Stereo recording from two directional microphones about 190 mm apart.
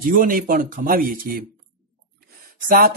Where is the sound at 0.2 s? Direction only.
45° right (ahead or behind).